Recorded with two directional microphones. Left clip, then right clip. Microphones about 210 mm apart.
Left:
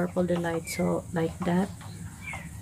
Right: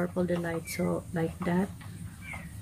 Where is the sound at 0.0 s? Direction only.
5° left (ahead or behind).